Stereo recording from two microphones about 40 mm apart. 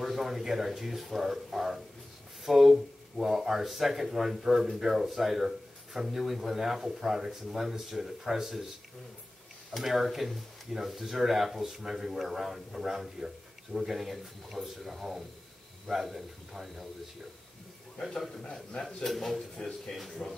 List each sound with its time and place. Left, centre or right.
0.0 s speech: centre
9.8 s speech: centre
18.0 s speech: centre
19.0 s speech: centre